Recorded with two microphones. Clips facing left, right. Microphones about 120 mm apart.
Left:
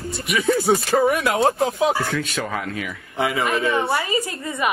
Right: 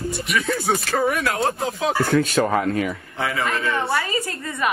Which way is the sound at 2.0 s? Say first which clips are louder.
Right 6 dB; 45° right (ahead or behind).